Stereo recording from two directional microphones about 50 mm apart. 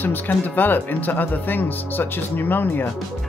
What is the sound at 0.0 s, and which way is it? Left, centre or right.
Speech, left.